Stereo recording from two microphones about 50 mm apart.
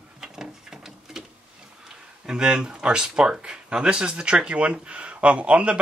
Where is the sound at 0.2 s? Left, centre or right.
Centre.